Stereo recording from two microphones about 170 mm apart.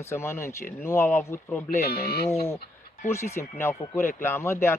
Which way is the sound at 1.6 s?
65° left (ahead or behind).